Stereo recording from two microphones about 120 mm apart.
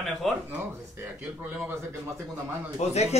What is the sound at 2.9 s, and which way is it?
Speech, 65° left (ahead or behind).